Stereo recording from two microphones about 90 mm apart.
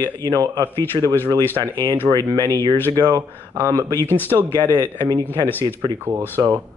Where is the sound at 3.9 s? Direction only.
25° left (ahead or behind).